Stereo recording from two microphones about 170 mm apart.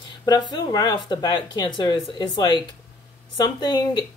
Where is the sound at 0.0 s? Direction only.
25° left (ahead or behind).